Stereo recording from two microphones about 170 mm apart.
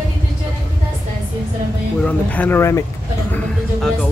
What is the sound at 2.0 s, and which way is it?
Speech, 10° left (ahead or behind).